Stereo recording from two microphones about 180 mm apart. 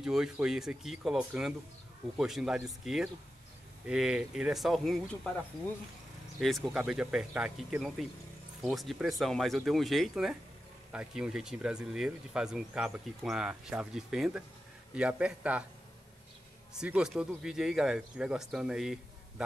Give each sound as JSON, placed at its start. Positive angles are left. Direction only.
{"t": 0.0, "sound": "speech", "side_deg": -5}
{"t": 6.4, "sound": "a man's voice", "side_deg": 0}
{"t": 16.8, "sound": "speech", "side_deg": -5}